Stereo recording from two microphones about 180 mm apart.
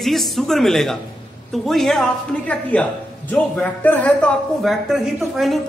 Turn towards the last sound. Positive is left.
turn(degrees=0)  # may be behind; listen again after turning